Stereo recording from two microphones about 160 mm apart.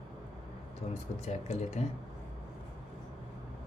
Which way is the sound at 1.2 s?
45° left (ahead or behind).